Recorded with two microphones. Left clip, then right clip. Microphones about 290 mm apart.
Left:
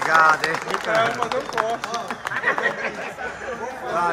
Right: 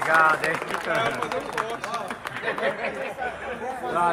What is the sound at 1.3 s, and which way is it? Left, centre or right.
Run, left.